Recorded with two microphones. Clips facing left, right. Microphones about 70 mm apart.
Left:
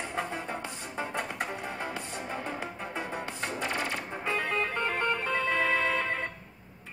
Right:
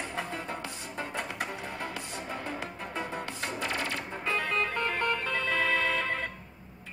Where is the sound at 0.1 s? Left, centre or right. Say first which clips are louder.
Left 2 dB; centre.